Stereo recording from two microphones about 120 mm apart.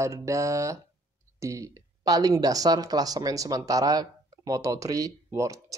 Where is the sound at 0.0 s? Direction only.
25° right (ahead or behind).